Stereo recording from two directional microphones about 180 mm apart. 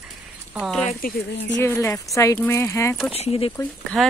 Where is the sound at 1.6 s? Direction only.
15° left (ahead or behind).